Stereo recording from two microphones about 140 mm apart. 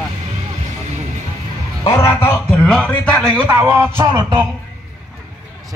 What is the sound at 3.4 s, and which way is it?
Speech, 15° right (ahead or behind).